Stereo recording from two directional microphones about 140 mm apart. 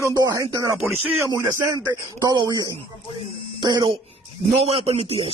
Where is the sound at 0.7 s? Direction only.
5° right (ahead or behind).